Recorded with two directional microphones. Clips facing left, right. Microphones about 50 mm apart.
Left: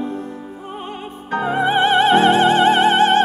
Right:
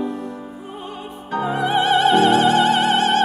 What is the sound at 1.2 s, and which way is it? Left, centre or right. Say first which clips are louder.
Music: left 3 dB; left.